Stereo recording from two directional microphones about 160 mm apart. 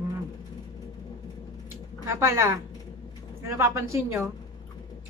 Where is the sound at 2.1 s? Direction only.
15° right (ahead or behind).